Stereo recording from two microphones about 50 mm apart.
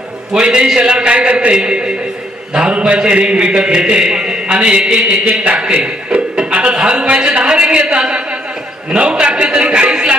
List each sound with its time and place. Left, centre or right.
0.3 s a man's voice: centre